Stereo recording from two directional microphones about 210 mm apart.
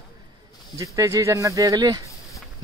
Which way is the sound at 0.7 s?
15° right (ahead or behind).